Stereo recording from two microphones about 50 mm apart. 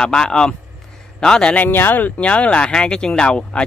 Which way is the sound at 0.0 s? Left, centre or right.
Centre.